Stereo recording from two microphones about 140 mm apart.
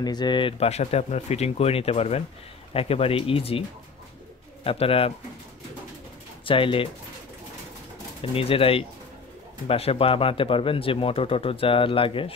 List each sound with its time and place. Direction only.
0.0 s speech: 30° left (ahead or behind)
4.6 s speech: 40° left (ahead or behind)
6.4 s speech: 40° left (ahead or behind)
8.2 s speech: 40° left (ahead or behind)